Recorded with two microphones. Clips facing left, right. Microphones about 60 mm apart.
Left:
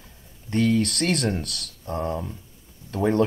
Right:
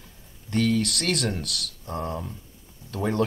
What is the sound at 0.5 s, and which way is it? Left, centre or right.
Speech, left.